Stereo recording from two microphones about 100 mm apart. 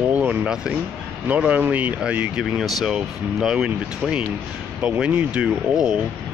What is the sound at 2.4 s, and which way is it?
Speech, centre (ahead or behind).